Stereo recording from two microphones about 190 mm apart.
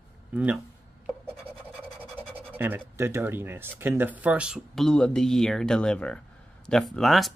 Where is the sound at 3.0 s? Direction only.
15° right (ahead or behind).